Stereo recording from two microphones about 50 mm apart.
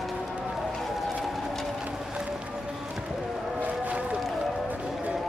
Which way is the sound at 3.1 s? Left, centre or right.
Centre.